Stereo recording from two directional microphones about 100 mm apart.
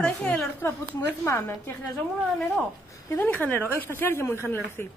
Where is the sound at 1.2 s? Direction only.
30° left (ahead or behind).